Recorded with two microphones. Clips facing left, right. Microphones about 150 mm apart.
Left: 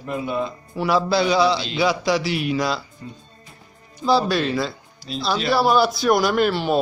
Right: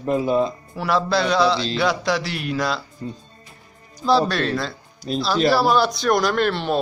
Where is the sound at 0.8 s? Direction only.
Centre (ahead or behind).